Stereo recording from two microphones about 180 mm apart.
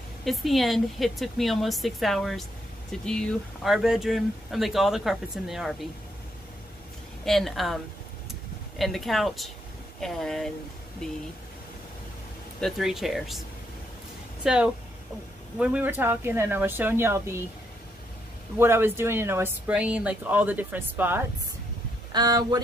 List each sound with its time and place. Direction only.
0.2 s speech: centre (ahead or behind)
7.2 s speech: centre (ahead or behind)
12.5 s speech: centre (ahead or behind)
14.4 s speech: 5° right (ahead or behind)
18.6 s speech: 10° right (ahead or behind)
22.1 s speech: 20° right (ahead or behind)